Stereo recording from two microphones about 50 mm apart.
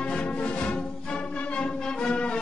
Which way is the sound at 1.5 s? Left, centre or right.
Left.